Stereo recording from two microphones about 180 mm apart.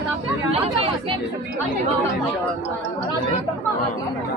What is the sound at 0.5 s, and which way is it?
Speech, 30° right (ahead or behind).